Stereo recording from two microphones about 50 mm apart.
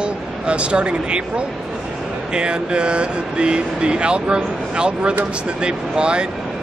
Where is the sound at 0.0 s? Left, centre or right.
Right.